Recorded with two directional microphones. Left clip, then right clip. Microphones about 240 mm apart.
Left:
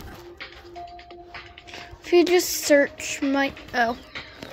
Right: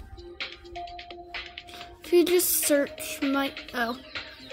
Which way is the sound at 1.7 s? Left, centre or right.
Centre.